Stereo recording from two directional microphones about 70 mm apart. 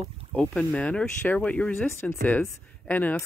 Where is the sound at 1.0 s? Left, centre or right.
Left.